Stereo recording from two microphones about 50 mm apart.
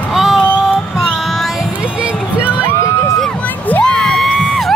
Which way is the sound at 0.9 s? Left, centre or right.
Centre.